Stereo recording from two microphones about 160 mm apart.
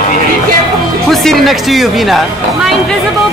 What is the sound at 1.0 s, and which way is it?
Speech, centre (ahead or behind).